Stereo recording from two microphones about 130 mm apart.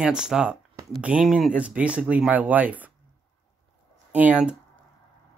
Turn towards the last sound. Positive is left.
turn(degrees=-10)  # may be behind; listen again after turning